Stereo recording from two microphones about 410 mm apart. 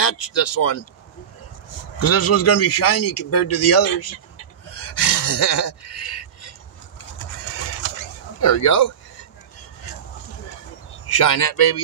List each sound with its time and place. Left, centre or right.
0.0 s speech: left
2.0 s speech: left
5.0 s a sound: left
8.4 s speech: left
11.2 s speech: left